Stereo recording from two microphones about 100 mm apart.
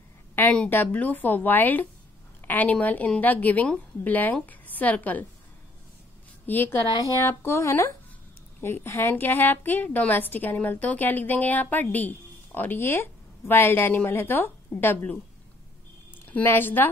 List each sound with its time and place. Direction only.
0.4 s a woman's voice: 15° left (ahead or behind)
6.4 s a woman's voice: 20° left (ahead or behind)